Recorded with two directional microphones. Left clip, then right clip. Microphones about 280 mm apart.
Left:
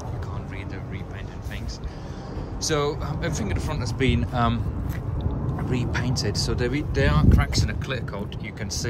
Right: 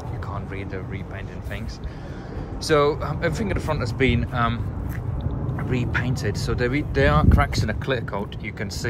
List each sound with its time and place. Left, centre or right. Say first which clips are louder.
2.6 s speech: right 6 dB; centre
5.6 s speech: right 3 dB; centre